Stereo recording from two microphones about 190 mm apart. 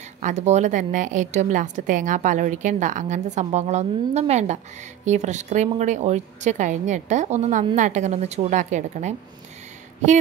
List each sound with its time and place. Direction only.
0.2 s a woman's voice: 40° right (ahead or behind)